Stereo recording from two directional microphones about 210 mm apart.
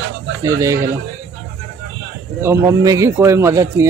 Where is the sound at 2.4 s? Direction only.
15° right (ahead or behind).